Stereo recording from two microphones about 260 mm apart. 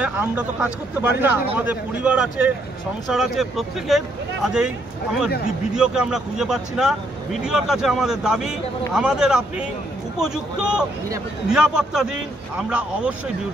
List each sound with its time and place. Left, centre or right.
0.0 s a man's voice: centre